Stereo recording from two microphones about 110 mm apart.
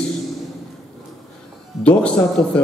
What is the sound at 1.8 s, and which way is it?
Speech, 10° left (ahead or behind).